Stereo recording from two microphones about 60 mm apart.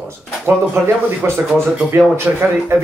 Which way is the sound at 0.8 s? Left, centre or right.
Right.